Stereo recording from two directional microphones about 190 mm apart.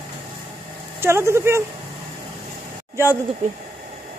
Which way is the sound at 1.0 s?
15° right (ahead or behind).